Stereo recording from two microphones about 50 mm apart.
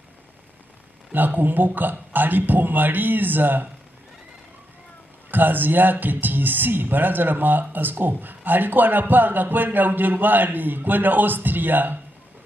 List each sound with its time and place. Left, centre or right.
1.1 s speech: right
5.3 s speech: right